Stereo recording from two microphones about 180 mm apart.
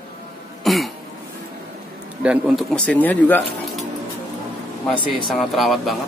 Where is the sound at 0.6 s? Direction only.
Centre (ahead or behind).